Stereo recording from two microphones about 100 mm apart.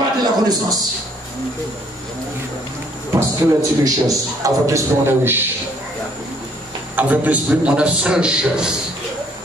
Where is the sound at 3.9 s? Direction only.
35° right (ahead or behind).